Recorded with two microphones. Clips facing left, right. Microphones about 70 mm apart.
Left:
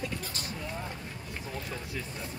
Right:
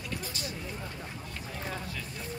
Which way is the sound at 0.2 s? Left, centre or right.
Left.